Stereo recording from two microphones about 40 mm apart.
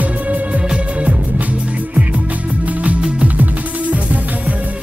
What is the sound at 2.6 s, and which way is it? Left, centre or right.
Music, right.